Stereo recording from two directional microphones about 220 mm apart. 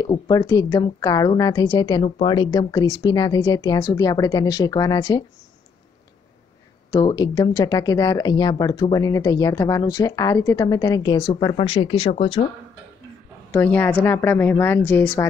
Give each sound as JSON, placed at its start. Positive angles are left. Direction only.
{"t": 0.0, "sound": "speech", "side_deg": 15}
{"t": 6.9, "sound": "speech", "side_deg": 15}
{"t": 13.5, "sound": "speech", "side_deg": 10}